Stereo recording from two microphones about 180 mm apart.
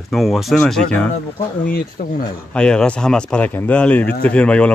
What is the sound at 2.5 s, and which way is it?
Speech, 5° left (ahead or behind).